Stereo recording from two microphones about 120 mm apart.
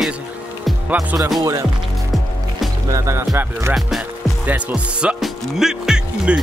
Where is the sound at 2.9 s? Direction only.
25° right (ahead or behind).